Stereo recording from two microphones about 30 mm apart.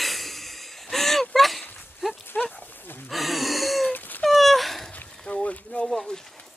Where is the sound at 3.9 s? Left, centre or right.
Left.